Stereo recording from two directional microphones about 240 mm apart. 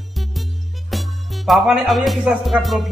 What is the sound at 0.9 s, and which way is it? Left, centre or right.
Speech, centre.